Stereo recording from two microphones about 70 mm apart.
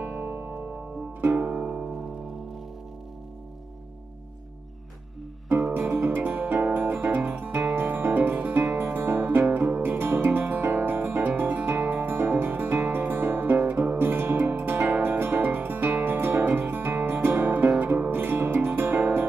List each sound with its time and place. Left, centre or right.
0.0 s music: right
5.5 s music: right